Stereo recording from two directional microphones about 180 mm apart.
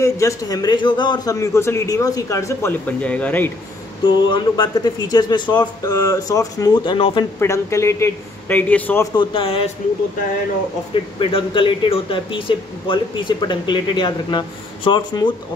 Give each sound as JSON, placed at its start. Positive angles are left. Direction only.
{"t": 0.0, "sound": "a man's voice", "side_deg": 15}
{"t": 4.0, "sound": "a man's voice", "side_deg": 25}
{"t": 9.1, "sound": "speech", "side_deg": 30}
{"t": 11.1, "sound": "speech", "side_deg": 30}